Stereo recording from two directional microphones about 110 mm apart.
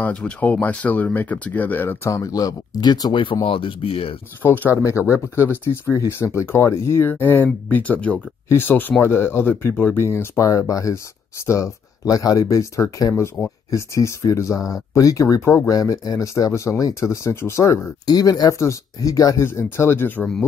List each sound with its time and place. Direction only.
0.0 s speech: 15° left (ahead or behind); by 4.2 s 55° left (ahead or behind)
4.4 s speech: 25° left (ahead or behind)